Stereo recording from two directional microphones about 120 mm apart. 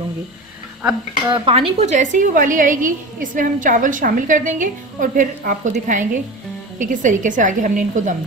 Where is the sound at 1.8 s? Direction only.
85° right.